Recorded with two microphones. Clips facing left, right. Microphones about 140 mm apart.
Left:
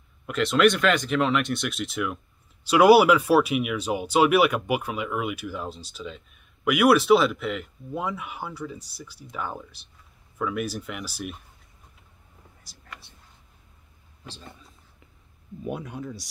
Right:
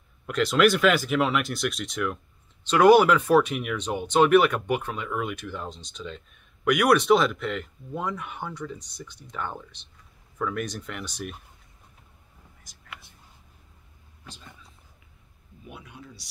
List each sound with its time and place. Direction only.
0.3 s speech: centre (ahead or behind)
12.7 s speech: 35° left (ahead or behind)
15.6 s speech: 45° left (ahead or behind)